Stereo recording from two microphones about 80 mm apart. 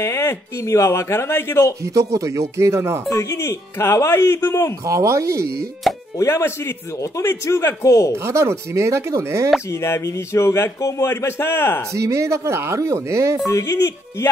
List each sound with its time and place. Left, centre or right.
0.0 s speech: left
1.8 s speech: right
3.1 s speech: left
4.8 s speech: right
6.1 s speech: left
8.2 s speech: right
9.7 s speech: left
11.9 s speech: right
13.5 s speech: left